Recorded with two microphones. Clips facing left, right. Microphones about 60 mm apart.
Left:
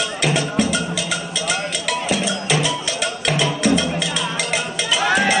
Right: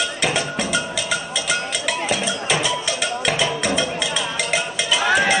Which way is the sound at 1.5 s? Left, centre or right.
Centre.